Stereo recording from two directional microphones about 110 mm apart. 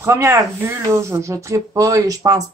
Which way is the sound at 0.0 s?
25° right (ahead or behind).